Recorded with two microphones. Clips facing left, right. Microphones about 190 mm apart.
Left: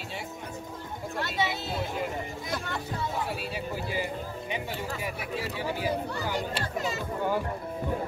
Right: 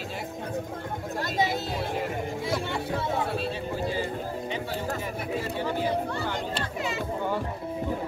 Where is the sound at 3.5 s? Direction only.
10° left (ahead or behind).